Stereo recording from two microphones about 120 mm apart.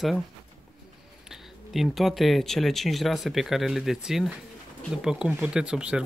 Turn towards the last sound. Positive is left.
turn(degrees=-5)  # may be behind; listen again after turning